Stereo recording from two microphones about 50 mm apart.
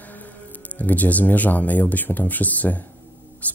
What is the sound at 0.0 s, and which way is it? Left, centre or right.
Speech, left.